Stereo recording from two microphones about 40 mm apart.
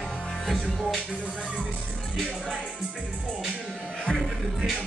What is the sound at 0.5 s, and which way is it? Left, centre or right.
Speech, centre.